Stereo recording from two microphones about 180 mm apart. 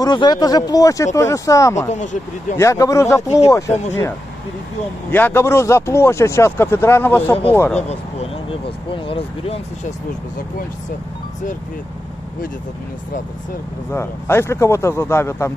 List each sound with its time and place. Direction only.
0.0 s speech: 25° left (ahead or behind)
5.1 s speech: 10° left (ahead or behind)
7.7 s speech: 35° left (ahead or behind)
13.9 s speech: 15° left (ahead or behind)